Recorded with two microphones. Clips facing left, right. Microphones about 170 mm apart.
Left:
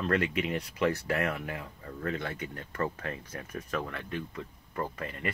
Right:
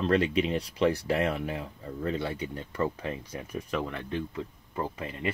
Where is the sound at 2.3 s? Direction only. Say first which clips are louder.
Right 4 dB; 25° right (ahead or behind).